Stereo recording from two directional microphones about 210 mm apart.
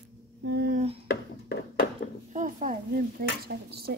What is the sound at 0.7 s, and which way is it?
Speech, 30° right (ahead or behind).